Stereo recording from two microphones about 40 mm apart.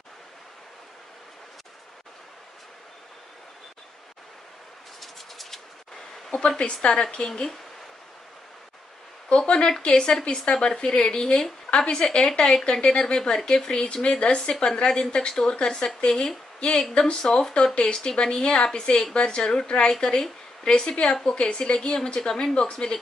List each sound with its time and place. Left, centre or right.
5.0 s a sound: centre
6.6 s a woman's voice: left
9.5 s a woman's voice: left
16.5 s a woman's voice: left
16.9 s speech: centre
17.7 s a woman's voice: left
21.1 s speech: centre
21.4 s a woman's voice: left